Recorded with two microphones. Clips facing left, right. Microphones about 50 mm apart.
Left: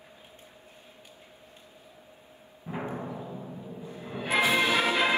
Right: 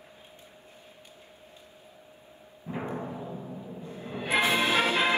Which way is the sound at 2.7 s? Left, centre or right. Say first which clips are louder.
Right 1 dB; centre.